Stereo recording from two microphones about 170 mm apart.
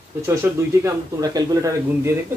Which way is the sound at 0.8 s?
20° right (ahead or behind).